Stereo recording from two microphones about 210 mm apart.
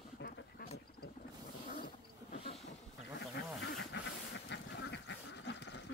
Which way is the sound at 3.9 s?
55° left (ahead or behind).